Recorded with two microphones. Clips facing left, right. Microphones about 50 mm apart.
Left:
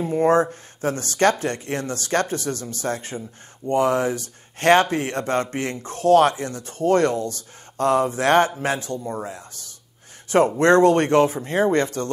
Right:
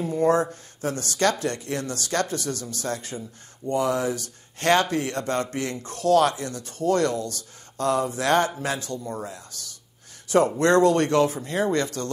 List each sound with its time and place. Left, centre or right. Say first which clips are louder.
0.0 s a man's voice: left 3 dB; left
10.6 s speech: left 5 dB; left